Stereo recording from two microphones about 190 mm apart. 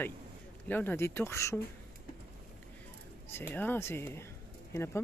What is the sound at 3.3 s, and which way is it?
Speech, 10° left (ahead or behind).